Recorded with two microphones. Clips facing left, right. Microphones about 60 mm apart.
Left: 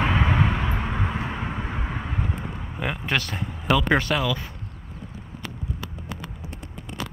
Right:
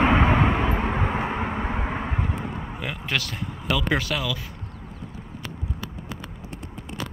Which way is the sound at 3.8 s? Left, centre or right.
Centre.